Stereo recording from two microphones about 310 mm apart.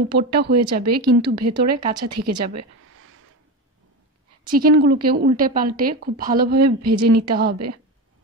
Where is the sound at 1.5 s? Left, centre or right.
Centre.